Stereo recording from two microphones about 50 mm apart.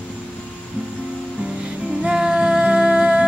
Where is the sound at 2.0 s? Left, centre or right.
Centre.